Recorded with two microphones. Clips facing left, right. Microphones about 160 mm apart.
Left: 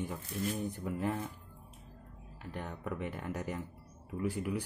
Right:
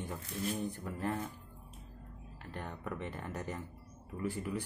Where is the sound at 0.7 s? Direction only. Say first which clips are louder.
Left 4 dB; 15° left (ahead or behind).